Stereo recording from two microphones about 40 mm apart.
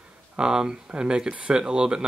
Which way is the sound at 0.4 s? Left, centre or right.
Centre.